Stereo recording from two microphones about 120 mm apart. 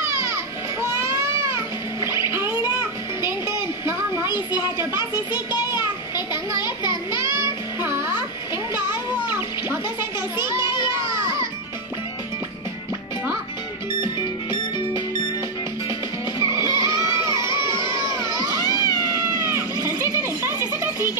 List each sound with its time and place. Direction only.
0.0 s baby cry: 25° right (ahead or behind)
2.0 s music: 25° right (ahead or behind)
3.4 s a sound: 20° right (ahead or behind)
5.7 s a sound: 40° left (ahead or behind)
7.8 s music: 25° right (ahead or behind)
10.4 s child singing: 25° right (ahead or behind)
16.3 s vehicle: 25° right (ahead or behind)
17.5 s children shouting: 40° left (ahead or behind)
18.0 s children shouting: 25° right (ahead or behind)
18.6 s cat: 30° left (ahead or behind)
18.9 s cat: 25° right (ahead or behind)